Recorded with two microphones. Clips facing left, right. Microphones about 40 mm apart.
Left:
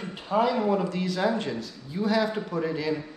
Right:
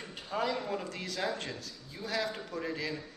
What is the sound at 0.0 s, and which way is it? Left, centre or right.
A man's voice, left.